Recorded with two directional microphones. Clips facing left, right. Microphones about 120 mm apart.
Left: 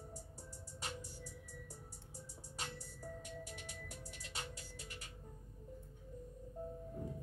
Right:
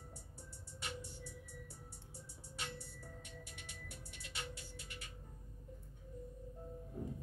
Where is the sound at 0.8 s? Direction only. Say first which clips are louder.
Even; 40° left (ahead or behind).